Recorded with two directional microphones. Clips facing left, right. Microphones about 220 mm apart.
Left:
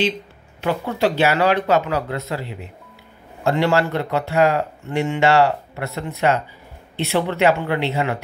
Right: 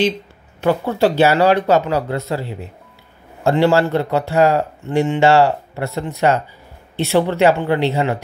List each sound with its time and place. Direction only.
0.6 s a man's voice: 40° right (ahead or behind)